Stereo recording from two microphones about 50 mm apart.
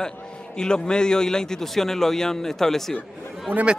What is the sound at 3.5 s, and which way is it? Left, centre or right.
Speech, left.